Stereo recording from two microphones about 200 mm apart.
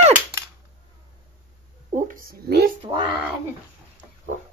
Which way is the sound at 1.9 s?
40° right (ahead or behind).